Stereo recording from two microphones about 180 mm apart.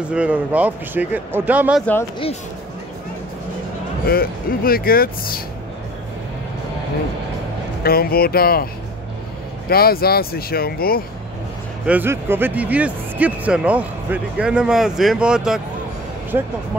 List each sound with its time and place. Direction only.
0.1 s speech: 5° right (ahead or behind)
4.0 s speech: 55° left (ahead or behind)
7.8 s speech: 55° left (ahead or behind)
9.7 s speech: 55° left (ahead or behind)
11.8 s speech: 10° right (ahead or behind)
16.3 s speech: 15° right (ahead or behind)